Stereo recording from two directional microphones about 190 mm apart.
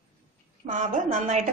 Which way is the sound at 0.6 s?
40° right (ahead or behind).